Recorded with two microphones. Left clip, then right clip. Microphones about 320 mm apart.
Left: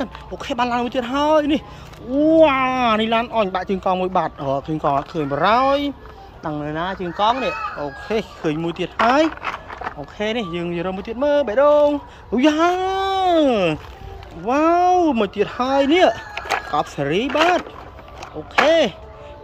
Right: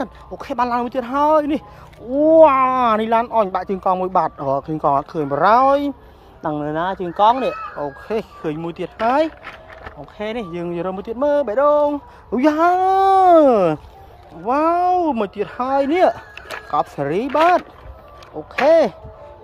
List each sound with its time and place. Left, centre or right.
0.4 s speech: centre
18.7 s speech: centre